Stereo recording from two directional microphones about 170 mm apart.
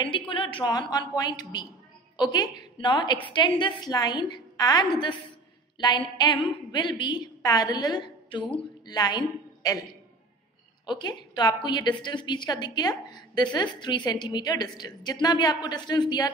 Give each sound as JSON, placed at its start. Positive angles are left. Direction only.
{"t": 0.0, "sound": "a woman's voice", "side_deg": 30}
{"t": 10.9, "sound": "a woman's voice", "side_deg": 25}